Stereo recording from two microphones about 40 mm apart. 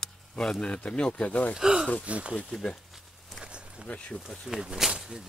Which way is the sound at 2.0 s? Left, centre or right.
Right.